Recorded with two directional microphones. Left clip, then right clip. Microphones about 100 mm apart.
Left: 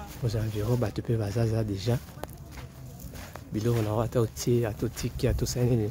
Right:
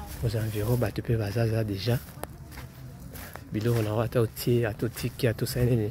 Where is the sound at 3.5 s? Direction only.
5° left (ahead or behind).